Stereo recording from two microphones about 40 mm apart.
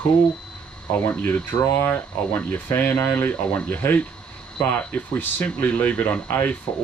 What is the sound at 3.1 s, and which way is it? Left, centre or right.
Speech, left.